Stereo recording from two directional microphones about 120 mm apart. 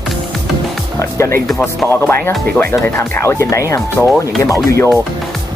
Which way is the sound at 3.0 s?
20° left (ahead or behind).